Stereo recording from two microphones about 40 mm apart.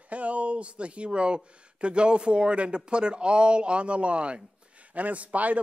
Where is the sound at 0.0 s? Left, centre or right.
Right.